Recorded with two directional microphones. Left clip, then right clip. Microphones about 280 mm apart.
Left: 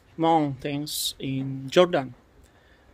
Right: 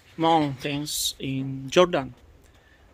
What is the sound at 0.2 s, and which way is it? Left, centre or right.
Speech, centre.